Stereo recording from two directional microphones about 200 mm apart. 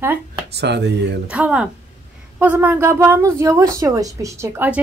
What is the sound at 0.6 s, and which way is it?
Speech, 60° right (ahead or behind).